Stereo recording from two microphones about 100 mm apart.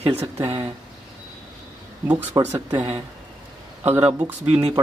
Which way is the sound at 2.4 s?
35° right (ahead or behind).